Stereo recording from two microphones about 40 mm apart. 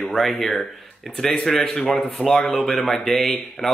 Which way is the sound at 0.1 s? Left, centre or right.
Centre.